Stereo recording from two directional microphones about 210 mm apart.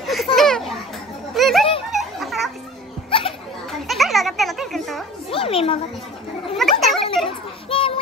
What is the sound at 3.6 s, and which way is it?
Children playing, centre (ahead or behind).